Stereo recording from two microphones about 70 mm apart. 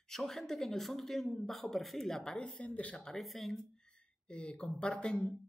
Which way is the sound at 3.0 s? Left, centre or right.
Centre.